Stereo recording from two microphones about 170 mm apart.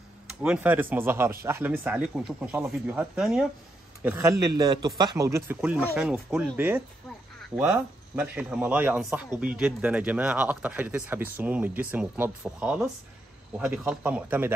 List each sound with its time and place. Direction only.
0.3 s speech: 5° right (ahead or behind)
4.0 s a man's voice: 15° right (ahead or behind)